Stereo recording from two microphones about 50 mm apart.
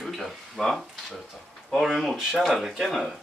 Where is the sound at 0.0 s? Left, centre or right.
Centre.